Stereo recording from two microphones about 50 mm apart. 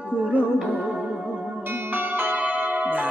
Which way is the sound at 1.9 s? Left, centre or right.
Right.